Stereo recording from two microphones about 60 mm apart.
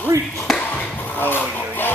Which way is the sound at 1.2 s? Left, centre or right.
Left.